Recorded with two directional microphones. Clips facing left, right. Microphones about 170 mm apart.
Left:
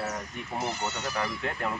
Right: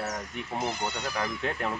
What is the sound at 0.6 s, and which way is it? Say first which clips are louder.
Speech: right 1 dB; 15° right (ahead or behind).